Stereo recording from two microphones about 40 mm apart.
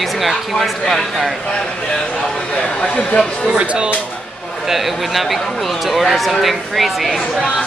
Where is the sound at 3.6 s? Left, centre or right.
Right.